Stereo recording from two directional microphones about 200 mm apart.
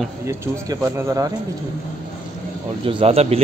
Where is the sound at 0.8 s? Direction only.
15° right (ahead or behind).